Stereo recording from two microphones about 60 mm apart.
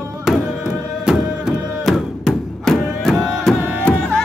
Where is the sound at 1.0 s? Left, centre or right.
Centre.